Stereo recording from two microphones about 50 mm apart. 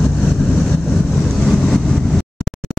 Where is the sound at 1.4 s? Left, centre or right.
Centre.